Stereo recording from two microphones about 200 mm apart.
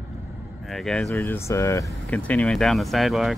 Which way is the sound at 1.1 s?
10° left (ahead or behind).